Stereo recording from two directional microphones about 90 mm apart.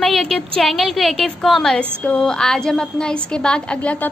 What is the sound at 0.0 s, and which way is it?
A woman's voice, centre (ahead or behind).